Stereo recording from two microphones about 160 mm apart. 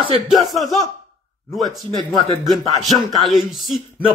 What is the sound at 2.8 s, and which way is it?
Speech, centre (ahead or behind).